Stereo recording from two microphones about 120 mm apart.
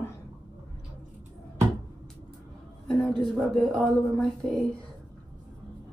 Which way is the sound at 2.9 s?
5° left (ahead or behind).